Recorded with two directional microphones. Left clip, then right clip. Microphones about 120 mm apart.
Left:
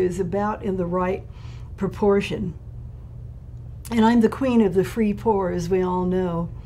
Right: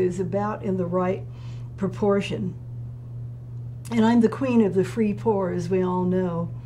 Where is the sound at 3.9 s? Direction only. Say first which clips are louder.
Left 2 dB; 45° left (ahead or behind).